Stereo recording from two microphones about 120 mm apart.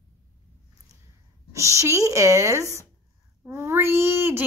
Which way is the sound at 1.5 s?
25° right (ahead or behind).